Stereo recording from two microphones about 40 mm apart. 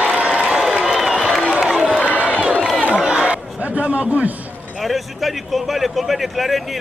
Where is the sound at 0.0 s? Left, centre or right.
Right.